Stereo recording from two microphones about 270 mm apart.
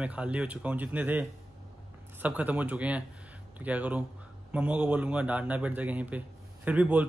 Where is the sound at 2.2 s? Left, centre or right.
Centre.